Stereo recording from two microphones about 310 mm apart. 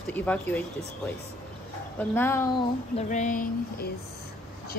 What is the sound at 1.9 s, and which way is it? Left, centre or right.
Speech, centre.